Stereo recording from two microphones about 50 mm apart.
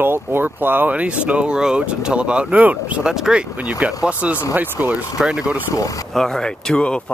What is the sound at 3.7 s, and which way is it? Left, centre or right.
Speech, right.